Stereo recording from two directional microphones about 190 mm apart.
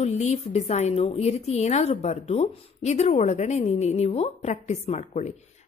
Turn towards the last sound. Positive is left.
turn(degrees=35)  # may be behind; listen again after turning